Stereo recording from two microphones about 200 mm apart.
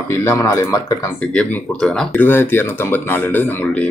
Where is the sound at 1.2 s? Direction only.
5° left (ahead or behind).